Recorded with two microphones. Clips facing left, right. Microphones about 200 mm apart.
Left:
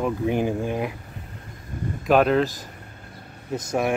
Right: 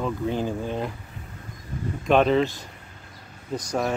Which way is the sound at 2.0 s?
5° left (ahead or behind).